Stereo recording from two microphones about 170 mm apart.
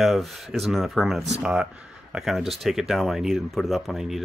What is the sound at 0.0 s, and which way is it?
Speech, centre (ahead or behind).